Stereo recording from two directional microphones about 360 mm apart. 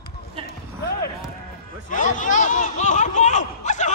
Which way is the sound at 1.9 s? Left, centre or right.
Left.